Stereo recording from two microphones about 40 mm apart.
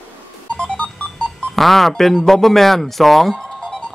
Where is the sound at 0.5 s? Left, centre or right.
Left.